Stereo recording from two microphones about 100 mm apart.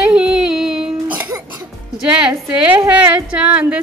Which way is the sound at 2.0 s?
10° right (ahead or behind).